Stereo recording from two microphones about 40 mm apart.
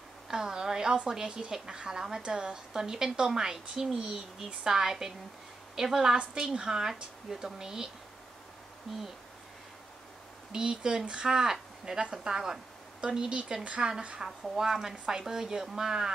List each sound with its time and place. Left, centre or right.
0.3 s a woman's voice: centre
10.5 s a woman's voice: centre
14.4 s a woman's voice: centre